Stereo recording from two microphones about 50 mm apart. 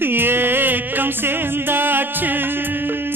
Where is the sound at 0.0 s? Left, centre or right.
Right.